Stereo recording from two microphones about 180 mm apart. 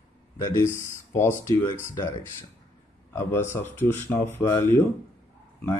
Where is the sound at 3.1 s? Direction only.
10° left (ahead or behind).